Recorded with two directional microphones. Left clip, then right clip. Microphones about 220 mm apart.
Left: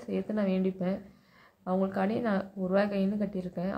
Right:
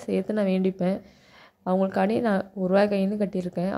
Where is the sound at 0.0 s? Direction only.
30° right (ahead or behind).